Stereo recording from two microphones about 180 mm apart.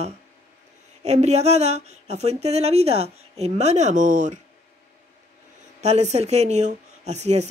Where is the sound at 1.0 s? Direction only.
40° right (ahead or behind).